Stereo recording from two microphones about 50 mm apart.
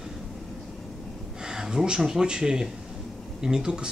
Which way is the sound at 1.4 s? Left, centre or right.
Centre.